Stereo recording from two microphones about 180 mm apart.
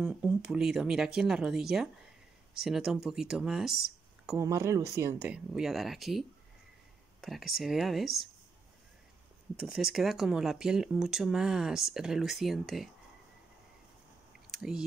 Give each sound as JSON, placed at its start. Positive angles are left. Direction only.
{"t": 0.0, "sound": "speech", "side_deg": -5}
{"t": 4.4, "sound": "speech", "side_deg": -15}
{"t": 5.5, "sound": "speech", "side_deg": 0}
{"t": 9.6, "sound": "speech", "side_deg": -5}
{"t": 14.5, "sound": "speech", "side_deg": 0}